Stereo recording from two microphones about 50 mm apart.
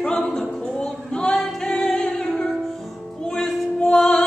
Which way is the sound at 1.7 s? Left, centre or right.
Left.